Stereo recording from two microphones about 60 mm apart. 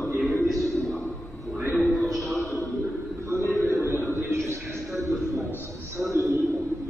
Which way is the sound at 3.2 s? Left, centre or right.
Right.